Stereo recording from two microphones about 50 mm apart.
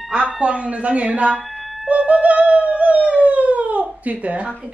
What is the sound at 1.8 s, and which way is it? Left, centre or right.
Howl, right.